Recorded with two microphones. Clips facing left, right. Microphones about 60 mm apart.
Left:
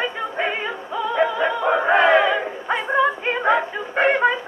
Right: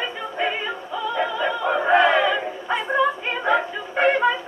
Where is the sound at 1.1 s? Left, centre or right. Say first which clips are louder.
Left 4 dB; left.